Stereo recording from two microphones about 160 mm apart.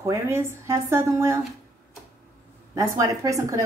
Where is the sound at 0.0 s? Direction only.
15° right (ahead or behind).